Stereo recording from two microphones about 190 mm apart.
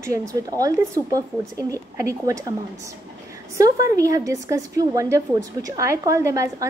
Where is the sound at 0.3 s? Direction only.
20° right (ahead or behind).